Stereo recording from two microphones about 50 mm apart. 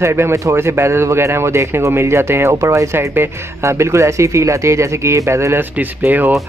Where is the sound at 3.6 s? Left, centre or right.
Right.